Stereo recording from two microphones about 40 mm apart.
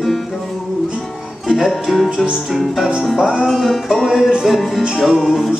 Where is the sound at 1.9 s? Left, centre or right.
Centre.